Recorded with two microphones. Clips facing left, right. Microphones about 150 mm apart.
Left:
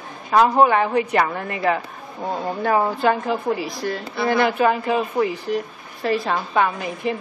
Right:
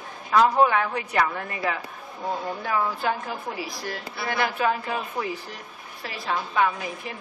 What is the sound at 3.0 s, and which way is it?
Speech, 75° left (ahead or behind).